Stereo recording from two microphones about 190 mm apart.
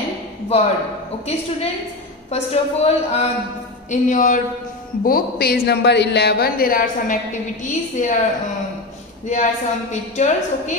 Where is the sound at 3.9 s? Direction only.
45° left (ahead or behind).